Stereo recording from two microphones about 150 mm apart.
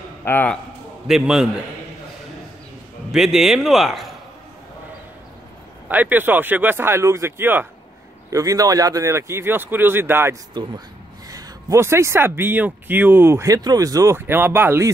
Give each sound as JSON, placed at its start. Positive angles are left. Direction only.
{"t": 0.2, "sound": "a man's voice", "side_deg": 10}
{"t": 1.0, "sound": "a man's voice", "side_deg": -5}
{"t": 3.1, "sound": "a man's voice", "side_deg": 0}
{"t": 5.9, "sound": "speech", "side_deg": -10}
{"t": 10.6, "sound": "speech", "side_deg": -30}